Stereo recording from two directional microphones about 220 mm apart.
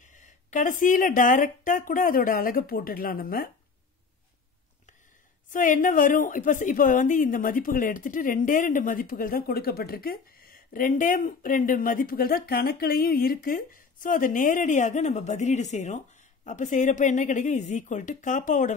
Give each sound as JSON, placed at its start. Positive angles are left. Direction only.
{"t": 0.0, "sound": "speech", "side_deg": 35}
{"t": 5.5, "sound": "speech", "side_deg": 35}